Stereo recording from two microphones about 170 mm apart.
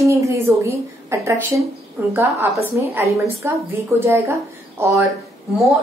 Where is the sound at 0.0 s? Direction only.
20° right (ahead or behind).